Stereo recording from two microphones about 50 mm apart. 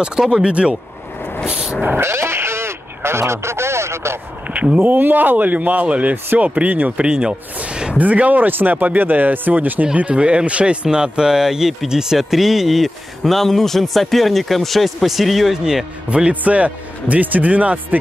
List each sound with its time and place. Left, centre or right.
0.0 s speech: centre
1.4 s vehicle: centre
2.0 s speech: right
4.7 s speech: right; by 15.6 s centre
16.1 s speech: right